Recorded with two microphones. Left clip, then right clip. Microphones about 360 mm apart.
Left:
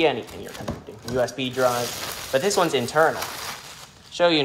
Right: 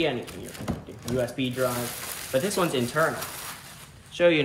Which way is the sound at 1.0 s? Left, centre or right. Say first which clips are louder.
Left 4 dB; centre.